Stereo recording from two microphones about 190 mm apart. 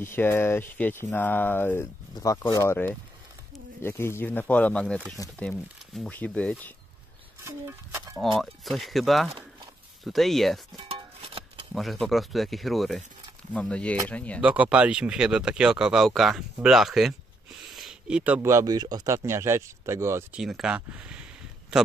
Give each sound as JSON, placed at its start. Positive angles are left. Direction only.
{"t": 0.0, "sound": "speech", "side_deg": 10}
{"t": 7.4, "sound": "stir", "side_deg": -15}
{"t": 8.2, "sound": "speech", "side_deg": 0}
{"t": 10.9, "sound": "a sound", "side_deg": -30}
{"t": 11.7, "sound": "speech", "side_deg": 0}
{"t": 14.4, "sound": "speech", "side_deg": -5}
{"t": 20.3, "sound": "speech", "side_deg": -5}